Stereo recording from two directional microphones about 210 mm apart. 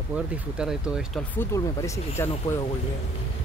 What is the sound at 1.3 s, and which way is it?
Speech, 15° left (ahead or behind).